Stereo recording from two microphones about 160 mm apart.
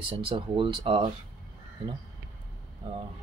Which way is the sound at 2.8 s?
30° right (ahead or behind).